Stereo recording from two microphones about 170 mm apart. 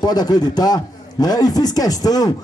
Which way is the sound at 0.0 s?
25° left (ahead or behind).